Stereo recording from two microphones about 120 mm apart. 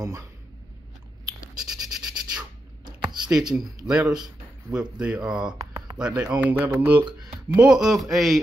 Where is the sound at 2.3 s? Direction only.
35° right (ahead or behind).